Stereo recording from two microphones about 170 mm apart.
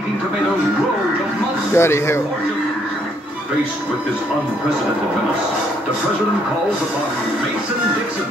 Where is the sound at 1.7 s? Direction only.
15° left (ahead or behind).